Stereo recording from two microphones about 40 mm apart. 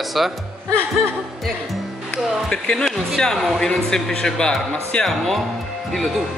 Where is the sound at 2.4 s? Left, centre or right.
Centre.